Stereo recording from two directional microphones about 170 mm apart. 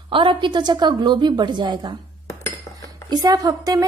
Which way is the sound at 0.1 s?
30° right (ahead or behind).